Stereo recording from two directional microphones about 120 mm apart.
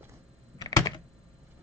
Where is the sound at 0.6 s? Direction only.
35° left (ahead or behind).